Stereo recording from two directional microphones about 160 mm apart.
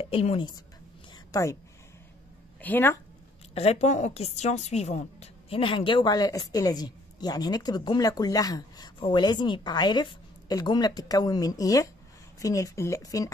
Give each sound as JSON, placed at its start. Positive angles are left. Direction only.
{"t": 0.0, "sound": "a woman's voice", "side_deg": 35}
{"t": 1.1, "sound": "a sound", "side_deg": 20}
{"t": 2.6, "sound": "speech", "side_deg": 15}
{"t": 3.5, "sound": "a woman's voice", "side_deg": 45}